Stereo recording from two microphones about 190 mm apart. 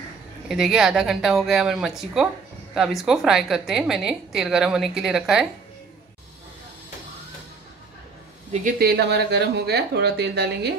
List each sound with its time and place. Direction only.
0.5 s a woman's voice: centre (ahead or behind)
8.7 s speech: 55° right (ahead or behind)